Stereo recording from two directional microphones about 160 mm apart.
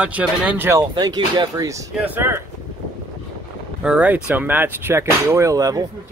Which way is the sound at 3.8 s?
5° right (ahead or behind).